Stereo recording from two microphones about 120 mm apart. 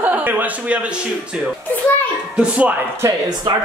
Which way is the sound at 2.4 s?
10° right (ahead or behind).